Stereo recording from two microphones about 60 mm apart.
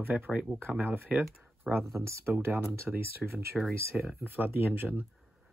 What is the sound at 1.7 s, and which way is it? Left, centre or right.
Speech, centre.